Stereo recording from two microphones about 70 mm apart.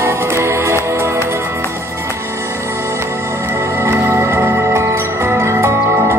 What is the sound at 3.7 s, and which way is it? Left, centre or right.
Music, right.